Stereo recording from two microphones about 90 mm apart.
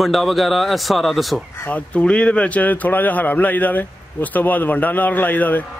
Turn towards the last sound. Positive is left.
turn(degrees=20)  # may be behind; listen again after turning